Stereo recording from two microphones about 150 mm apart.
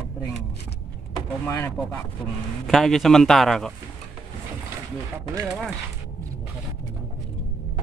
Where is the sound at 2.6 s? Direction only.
Centre (ahead or behind).